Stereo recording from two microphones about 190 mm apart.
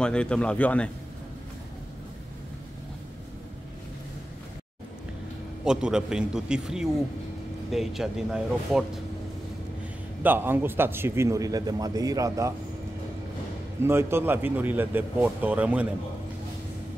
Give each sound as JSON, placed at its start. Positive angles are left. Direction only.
{"t": 0.0, "sound": "speech", "side_deg": 5}
{"t": 5.7, "sound": "speech", "side_deg": -5}
{"t": 10.2, "sound": "a man's voice", "side_deg": -10}
{"t": 13.8, "sound": "a man's voice", "side_deg": -10}